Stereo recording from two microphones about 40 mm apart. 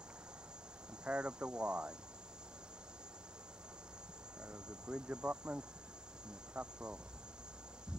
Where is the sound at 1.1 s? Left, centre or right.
Right.